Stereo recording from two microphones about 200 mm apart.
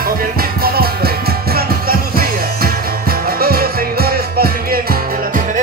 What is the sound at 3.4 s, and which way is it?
Music, 50° right (ahead or behind).